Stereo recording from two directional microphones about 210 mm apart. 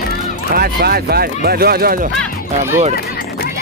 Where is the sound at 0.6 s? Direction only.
45° right (ahead or behind).